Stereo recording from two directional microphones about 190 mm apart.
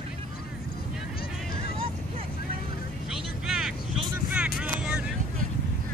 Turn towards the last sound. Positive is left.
turn(degrees=-5)  # may be behind; listen again after turning